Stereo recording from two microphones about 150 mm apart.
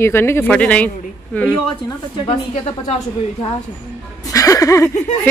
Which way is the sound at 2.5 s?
45° left (ahead or behind).